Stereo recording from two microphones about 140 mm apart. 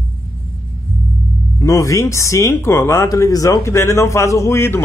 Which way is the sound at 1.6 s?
20° left (ahead or behind).